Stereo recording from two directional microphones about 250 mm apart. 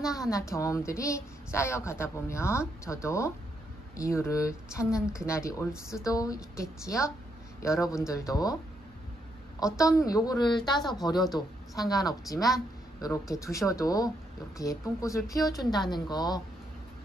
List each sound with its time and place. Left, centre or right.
0.1 s a woman's voice: centre
5.7 s speech: centre
6.0 s a woman's voice: centre
9.6 s a woman's voice: centre